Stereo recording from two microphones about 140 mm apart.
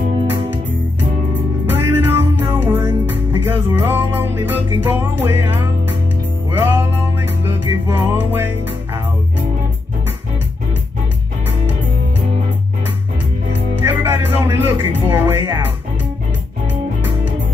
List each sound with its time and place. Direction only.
1.7 s music: 15° right (ahead or behind)
13.8 s music: 15° right (ahead or behind)
15.4 s speech: 20° right (ahead or behind)